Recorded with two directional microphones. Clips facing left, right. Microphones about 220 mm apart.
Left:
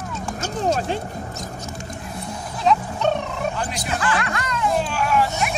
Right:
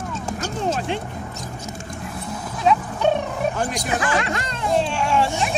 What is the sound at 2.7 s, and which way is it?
Music, 10° right (ahead or behind).